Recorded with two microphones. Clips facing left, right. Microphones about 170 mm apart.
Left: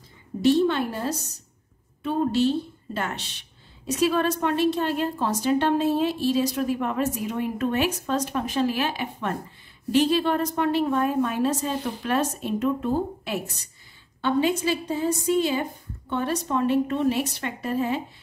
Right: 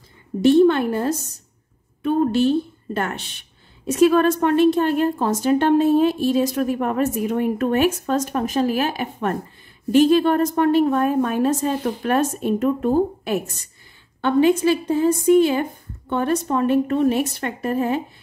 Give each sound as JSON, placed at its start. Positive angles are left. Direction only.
{"t": 0.5, "sound": "a woman's voice", "side_deg": -55}